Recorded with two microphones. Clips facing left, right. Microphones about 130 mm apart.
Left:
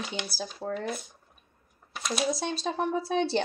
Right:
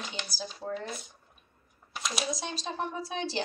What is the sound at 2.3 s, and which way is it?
Speech, 60° left (ahead or behind).